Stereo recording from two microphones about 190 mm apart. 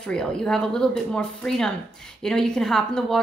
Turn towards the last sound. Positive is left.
turn(degrees=5)  # may be behind; listen again after turning